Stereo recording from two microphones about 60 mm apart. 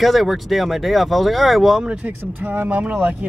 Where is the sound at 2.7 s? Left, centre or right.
Centre.